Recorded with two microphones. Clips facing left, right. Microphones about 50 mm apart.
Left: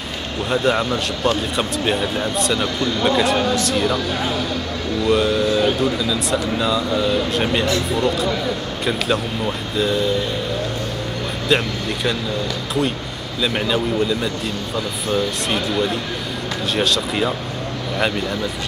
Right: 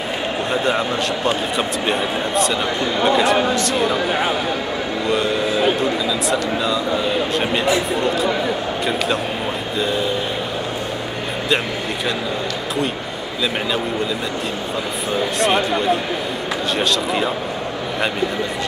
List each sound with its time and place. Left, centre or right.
0.5 s speech: centre
2.5 s speech: centre
3.9 s speech: right
5.0 s speech: centre
9.8 s speech: centre
13.4 s speech: centre
15.4 s speech: centre